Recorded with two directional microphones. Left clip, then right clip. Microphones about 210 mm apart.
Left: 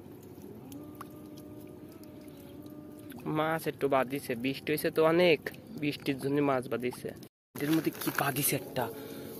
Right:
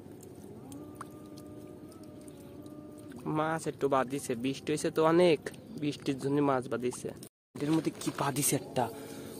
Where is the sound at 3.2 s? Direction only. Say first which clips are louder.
Left 1 dB; 5° right (ahead or behind).